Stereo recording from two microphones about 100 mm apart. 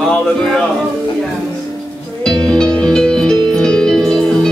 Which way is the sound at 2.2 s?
5° left (ahead or behind).